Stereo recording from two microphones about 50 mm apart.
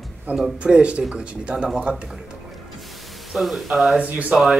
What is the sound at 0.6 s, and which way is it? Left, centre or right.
Speech, right.